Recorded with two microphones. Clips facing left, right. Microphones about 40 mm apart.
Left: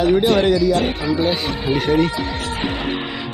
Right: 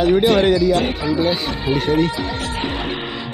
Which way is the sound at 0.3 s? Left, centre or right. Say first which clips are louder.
Right 1 dB; centre.